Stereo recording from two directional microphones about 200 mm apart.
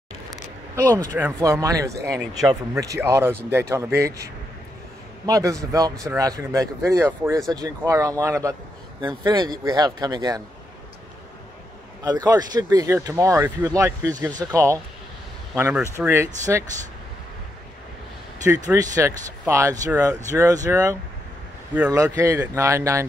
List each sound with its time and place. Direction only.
0.3 s speech: 15° right (ahead or behind)
12.0 s speech: 20° right (ahead or behind)
18.4 s speech: 15° right (ahead or behind)